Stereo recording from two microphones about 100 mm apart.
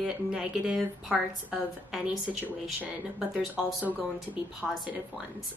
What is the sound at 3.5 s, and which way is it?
Speech, 15° right (ahead or behind).